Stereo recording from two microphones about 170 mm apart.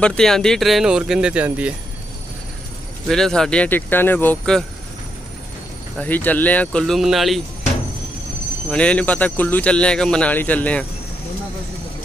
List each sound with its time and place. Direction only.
0.0 s speech: 5° left (ahead or behind)
3.1 s speech: 5° left (ahead or behind)
5.9 s speech: 10° left (ahead or behind)
8.6 s speech: 5° left (ahead or behind)